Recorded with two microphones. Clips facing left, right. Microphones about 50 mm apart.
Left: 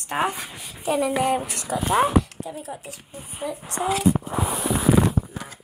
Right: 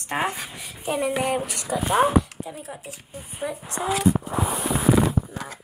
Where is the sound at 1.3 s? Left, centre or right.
Left.